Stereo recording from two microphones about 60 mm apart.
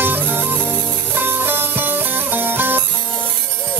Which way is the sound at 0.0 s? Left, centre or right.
Right.